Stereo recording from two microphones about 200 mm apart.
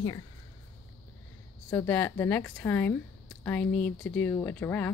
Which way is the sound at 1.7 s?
10° left (ahead or behind).